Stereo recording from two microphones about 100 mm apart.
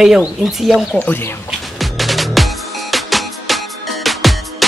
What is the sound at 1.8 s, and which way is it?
Music, centre (ahead or behind).